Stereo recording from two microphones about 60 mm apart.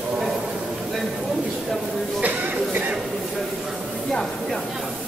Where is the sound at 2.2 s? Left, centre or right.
Right.